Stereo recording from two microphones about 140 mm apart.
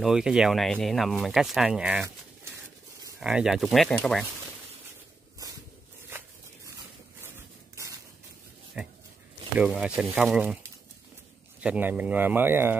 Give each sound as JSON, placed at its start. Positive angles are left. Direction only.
{"t": 0.0, "sound": "speech", "side_deg": -5}
{"t": 3.2, "sound": "speech", "side_deg": -5}
{"t": 6.0, "sound": "a sound", "side_deg": -15}
{"t": 8.8, "sound": "speech", "side_deg": -5}
{"t": 11.6, "sound": "speech", "side_deg": -10}